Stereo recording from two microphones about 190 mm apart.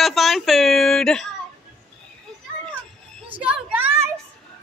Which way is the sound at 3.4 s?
10° right (ahead or behind).